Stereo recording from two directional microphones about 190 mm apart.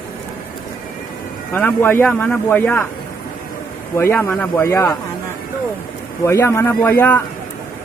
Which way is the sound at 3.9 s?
10° left (ahead or behind).